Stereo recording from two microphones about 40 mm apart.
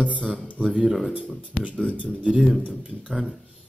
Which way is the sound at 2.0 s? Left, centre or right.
Right.